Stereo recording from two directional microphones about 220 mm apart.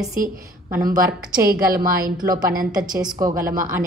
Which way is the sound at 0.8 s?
40° right (ahead or behind).